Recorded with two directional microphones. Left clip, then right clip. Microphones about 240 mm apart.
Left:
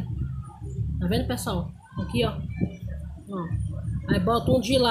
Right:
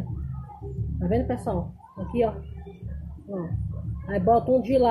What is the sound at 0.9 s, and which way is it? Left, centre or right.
Speech, left.